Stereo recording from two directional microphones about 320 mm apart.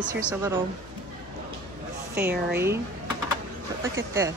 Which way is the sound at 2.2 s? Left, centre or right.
Centre.